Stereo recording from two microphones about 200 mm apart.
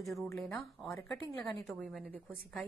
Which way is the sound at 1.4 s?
Centre (ahead or behind).